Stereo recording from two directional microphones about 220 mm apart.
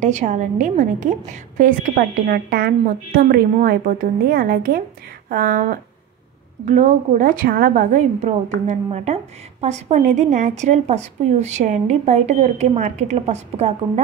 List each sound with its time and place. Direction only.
0.0 s a woman's voice: 35° right (ahead or behind)